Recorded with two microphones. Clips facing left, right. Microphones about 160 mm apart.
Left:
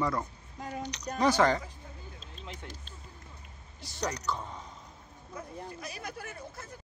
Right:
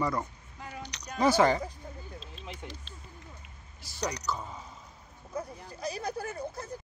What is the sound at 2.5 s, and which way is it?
Speech, 45° left (ahead or behind).